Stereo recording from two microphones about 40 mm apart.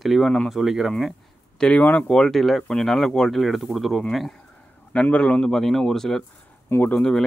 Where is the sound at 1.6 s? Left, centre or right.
Centre.